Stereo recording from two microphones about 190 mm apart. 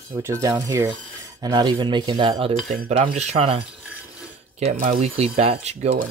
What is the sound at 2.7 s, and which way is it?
Speech, 35° right (ahead or behind).